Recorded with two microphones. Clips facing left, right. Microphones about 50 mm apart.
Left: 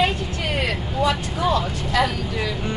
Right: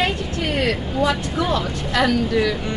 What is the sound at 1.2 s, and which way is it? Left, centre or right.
Speech, right.